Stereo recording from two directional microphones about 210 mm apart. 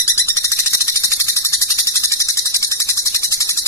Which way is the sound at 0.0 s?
15° left (ahead or behind).